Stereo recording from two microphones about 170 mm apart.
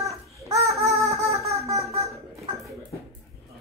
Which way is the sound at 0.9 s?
20° right (ahead or behind).